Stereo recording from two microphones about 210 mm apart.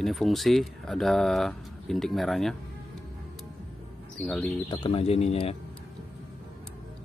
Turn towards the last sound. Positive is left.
turn(degrees=30)  # may be behind; listen again after turning